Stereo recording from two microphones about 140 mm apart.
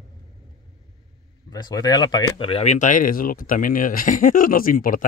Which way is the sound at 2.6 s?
60° left (ahead or behind).